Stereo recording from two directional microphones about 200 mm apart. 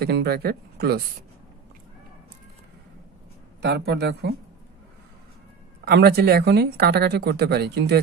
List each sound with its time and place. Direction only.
0.0 s speech: 55° right (ahead or behind)
3.6 s speech: 55° right (ahead or behind)
5.9 s speech: 55° right (ahead or behind)